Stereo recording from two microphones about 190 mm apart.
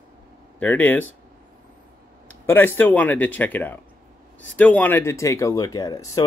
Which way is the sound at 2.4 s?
10° left (ahead or behind).